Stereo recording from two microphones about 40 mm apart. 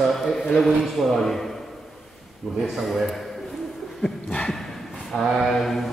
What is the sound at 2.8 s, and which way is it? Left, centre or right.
Speech, centre.